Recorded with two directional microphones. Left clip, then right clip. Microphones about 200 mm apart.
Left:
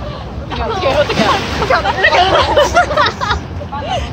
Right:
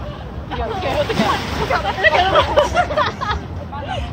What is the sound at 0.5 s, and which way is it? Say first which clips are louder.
Hubbub: left 6 dB; 45° left (ahead or behind).